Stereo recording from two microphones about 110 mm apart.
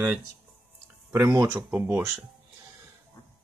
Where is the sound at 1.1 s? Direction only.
25° right (ahead or behind).